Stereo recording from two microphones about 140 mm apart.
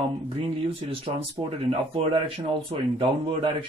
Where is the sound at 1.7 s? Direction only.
40° right (ahead or behind).